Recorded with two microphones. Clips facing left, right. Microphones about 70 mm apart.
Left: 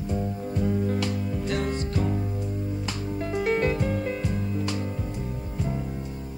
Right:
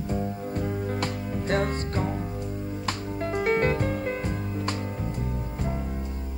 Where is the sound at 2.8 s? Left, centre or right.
Right.